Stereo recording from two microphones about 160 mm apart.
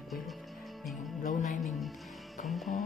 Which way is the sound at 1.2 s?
50° left (ahead or behind).